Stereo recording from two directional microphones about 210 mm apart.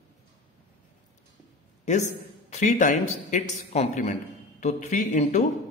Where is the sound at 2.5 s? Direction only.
35° left (ahead or behind).